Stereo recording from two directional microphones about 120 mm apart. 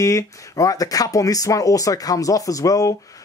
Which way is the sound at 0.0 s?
25° left (ahead or behind).